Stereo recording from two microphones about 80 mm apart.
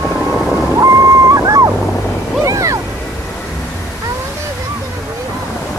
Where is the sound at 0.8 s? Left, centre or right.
Right.